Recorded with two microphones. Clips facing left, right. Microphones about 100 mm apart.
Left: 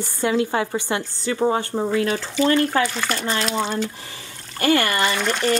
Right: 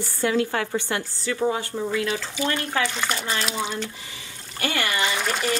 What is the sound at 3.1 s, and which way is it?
Speech, 50° left (ahead or behind).